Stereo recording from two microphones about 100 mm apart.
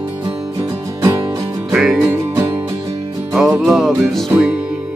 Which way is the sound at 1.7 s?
Centre (ahead or behind).